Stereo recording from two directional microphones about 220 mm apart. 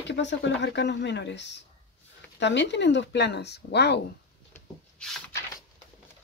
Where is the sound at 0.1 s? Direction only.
55° left (ahead or behind).